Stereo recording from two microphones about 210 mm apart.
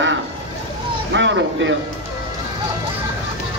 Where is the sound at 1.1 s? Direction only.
60° right (ahead or behind).